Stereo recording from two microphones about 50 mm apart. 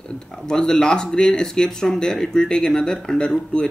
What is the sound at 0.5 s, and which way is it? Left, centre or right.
Speech, centre.